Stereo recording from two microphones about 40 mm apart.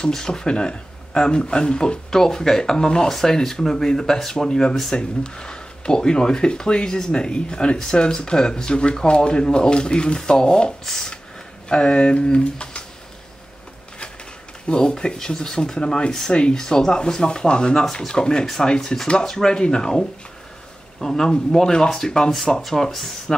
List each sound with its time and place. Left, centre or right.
0.1 s speech: centre
11.7 s speech: left
14.7 s speech: left
18.8 s speech: centre